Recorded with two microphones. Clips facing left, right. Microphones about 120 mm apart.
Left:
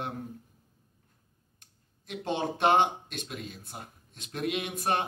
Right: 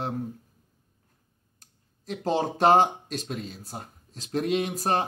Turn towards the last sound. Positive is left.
turn(degrees=-35)  # may be behind; listen again after turning